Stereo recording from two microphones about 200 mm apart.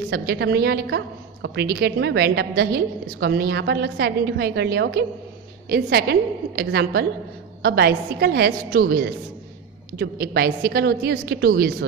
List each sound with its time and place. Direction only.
0.1 s a woman's voice: 50° right (ahead or behind)